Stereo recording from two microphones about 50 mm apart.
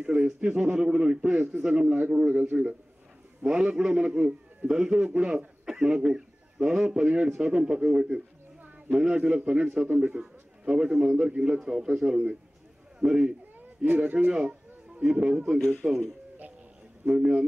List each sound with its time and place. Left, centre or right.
0.0 s a man's voice: right
3.4 s a man's voice: centre
13.8 s a man's voice: right
15.8 s speech: right
17.0 s a man's voice: right